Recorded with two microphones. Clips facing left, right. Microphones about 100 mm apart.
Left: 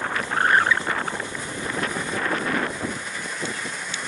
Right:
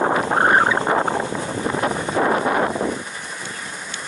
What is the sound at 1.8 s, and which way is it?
Wind noise, 35° right (ahead or behind).